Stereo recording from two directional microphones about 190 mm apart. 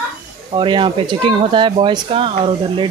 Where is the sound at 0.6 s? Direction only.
25° right (ahead or behind).